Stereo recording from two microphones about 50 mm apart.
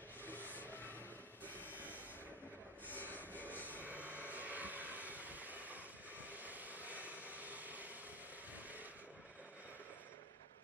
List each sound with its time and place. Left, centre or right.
0.2 s vehicle: left
1.6 s vehicle: right
2.9 s a sound: left
3.8 s vehicle: right